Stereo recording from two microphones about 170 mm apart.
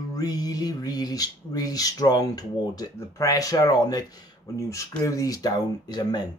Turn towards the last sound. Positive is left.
turn(degrees=25)  # may be behind; listen again after turning